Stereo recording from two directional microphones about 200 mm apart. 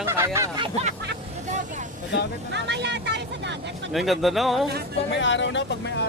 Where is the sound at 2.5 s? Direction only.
60° right (ahead or behind).